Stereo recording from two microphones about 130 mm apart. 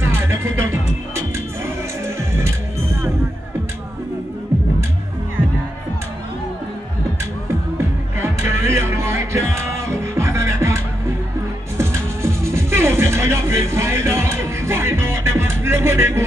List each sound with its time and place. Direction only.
0.3 s music: 20° right (ahead or behind)
7.7 s music: 20° right (ahead or behind)
11.8 s music: 20° right (ahead or behind)